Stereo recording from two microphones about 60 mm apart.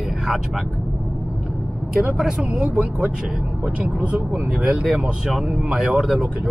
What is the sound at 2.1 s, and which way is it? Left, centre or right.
Speech, centre.